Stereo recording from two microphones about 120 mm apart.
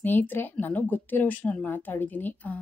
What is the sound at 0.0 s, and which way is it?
A woman's voice, 15° left (ahead or behind).